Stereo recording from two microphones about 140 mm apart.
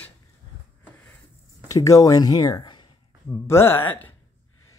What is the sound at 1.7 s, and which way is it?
Speech, 25° left (ahead or behind).